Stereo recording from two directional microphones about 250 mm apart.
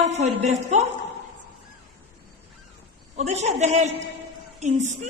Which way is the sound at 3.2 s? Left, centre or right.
Right.